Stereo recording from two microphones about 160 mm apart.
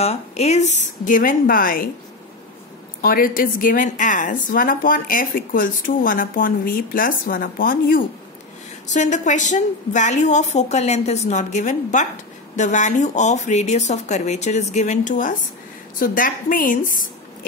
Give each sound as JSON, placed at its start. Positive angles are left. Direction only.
{"t": 0.0, "sound": "a woman's voice", "side_deg": 40}
{"t": 3.0, "sound": "a woman's voice", "side_deg": 65}
{"t": 8.8, "sound": "a woman's voice", "side_deg": 50}
{"t": 16.0, "sound": "a woman's voice", "side_deg": 60}